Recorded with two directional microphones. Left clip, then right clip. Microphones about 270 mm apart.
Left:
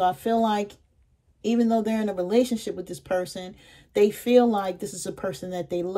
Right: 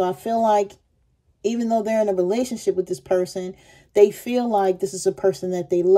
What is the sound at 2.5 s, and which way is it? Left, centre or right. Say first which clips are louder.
Speech: right 8 dB; centre.